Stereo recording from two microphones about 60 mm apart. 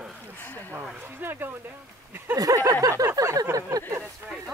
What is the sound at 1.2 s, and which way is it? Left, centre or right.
Speech, right.